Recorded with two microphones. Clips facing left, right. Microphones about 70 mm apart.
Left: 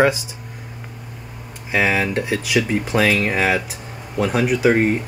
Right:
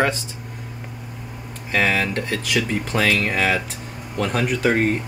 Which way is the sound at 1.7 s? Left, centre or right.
Centre.